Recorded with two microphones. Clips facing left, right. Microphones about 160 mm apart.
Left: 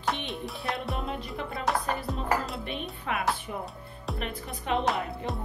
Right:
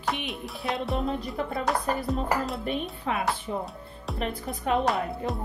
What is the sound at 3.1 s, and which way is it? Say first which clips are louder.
Speech: right 2 dB; 30° right (ahead or behind).